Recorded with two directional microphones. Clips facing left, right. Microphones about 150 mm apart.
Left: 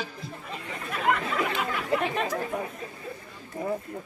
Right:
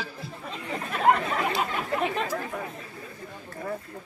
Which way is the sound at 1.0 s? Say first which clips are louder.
Right 3 dB; 35° right (ahead or behind).